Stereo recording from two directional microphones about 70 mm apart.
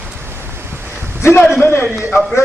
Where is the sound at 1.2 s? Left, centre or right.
Left.